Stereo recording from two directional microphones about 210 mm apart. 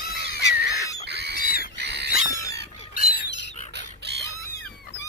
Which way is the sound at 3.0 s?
45° left (ahead or behind).